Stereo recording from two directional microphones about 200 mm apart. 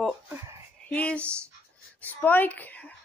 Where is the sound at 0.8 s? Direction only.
5° left (ahead or behind).